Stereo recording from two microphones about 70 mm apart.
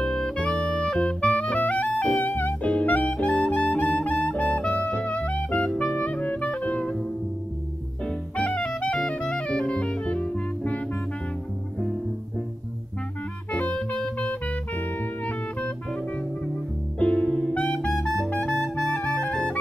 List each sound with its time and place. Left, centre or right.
0.0 s music: centre
13.5 s music: centre
17.0 s music: centre
17.3 s music: centre
17.6 s music: centre
18.9 s music: left